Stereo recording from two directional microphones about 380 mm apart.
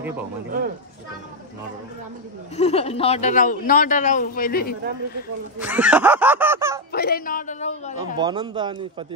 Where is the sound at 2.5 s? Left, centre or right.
Centre.